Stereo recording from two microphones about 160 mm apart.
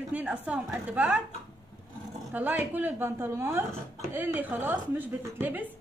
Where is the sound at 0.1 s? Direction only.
10° right (ahead or behind).